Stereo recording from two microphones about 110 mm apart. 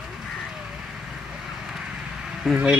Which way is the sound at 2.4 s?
5° right (ahead or behind).